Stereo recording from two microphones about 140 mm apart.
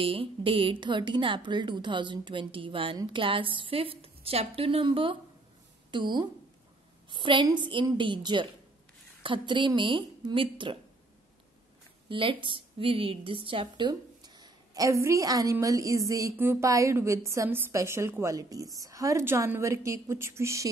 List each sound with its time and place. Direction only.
0.0 s a woman's voice: 40° right (ahead or behind)
12.1 s a woman's voice: 40° right (ahead or behind); by 20.6 s 20° right (ahead or behind)